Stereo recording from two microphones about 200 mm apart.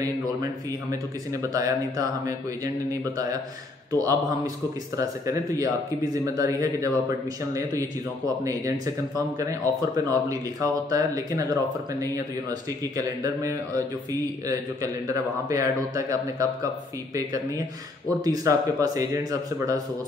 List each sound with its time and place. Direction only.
1.4 s speech: 15° right (ahead or behind)
18.2 s speech: 15° right (ahead or behind)